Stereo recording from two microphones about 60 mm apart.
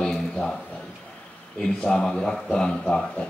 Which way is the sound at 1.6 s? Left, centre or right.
Centre.